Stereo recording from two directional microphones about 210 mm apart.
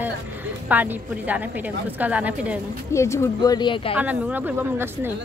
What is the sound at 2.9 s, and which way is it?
Speech, 15° left (ahead or behind).